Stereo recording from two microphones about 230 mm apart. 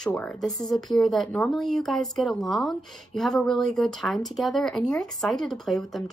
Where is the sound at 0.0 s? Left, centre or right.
Centre.